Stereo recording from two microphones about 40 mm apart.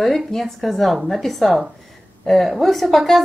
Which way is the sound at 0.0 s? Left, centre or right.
Centre.